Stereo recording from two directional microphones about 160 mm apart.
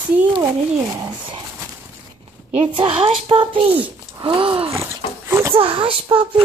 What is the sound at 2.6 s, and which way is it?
A woman's voice, 35° right (ahead or behind).